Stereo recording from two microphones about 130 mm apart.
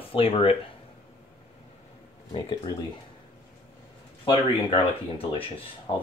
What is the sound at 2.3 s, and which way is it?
Speech, 35° left (ahead or behind).